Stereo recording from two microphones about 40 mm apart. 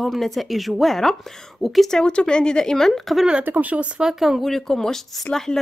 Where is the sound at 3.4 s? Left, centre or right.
Right.